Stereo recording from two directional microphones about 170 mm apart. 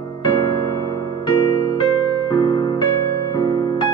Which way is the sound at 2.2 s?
25° left (ahead or behind).